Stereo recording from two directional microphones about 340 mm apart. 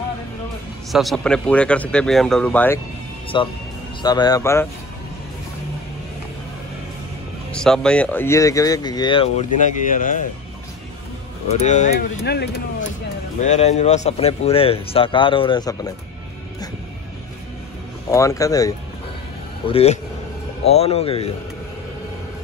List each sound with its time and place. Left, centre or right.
0.9 s speech: centre
7.5 s speech: centre; by 10.2 s left
11.6 s speech: left
18.1 s speech: centre
19.7 s speech: centre